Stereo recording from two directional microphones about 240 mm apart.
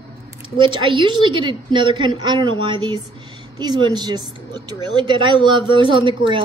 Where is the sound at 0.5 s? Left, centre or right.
Right.